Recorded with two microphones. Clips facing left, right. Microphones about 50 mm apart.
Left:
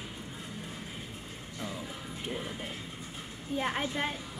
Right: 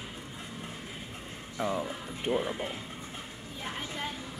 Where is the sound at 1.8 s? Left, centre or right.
Right.